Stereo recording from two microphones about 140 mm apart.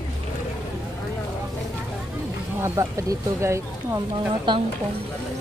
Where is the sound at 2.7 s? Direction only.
25° right (ahead or behind).